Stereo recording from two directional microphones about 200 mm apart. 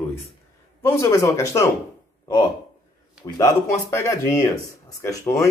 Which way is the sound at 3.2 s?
15° left (ahead or behind).